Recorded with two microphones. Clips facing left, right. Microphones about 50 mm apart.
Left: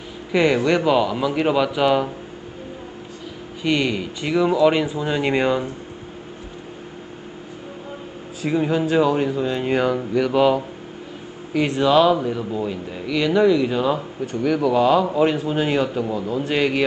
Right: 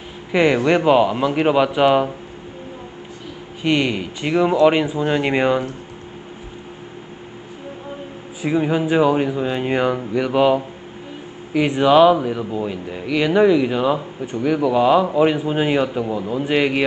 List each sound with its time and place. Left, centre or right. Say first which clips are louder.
0.3 s speech: right 2 dB; centre
3.6 s speech: right 2 dB; centre
8.4 s speech: right 1 dB; centre